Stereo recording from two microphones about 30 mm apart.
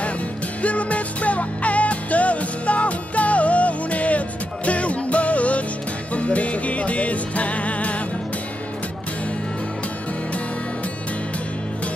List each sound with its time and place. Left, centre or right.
0.6 s music: left